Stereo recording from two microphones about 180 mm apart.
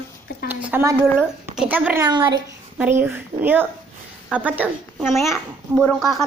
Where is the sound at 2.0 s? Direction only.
25° right (ahead or behind).